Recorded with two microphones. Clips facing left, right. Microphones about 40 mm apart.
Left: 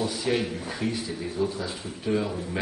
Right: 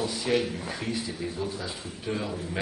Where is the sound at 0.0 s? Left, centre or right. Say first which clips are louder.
Even; centre.